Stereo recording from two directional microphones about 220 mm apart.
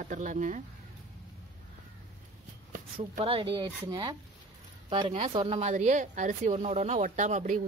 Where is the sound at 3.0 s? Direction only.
25° right (ahead or behind).